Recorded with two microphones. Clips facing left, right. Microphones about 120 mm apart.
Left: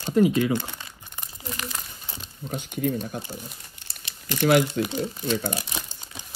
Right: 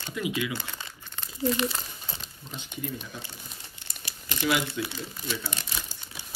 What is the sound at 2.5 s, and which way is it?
Speech, 50° left (ahead or behind).